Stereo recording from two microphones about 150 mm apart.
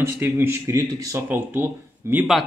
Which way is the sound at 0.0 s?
15° right (ahead or behind).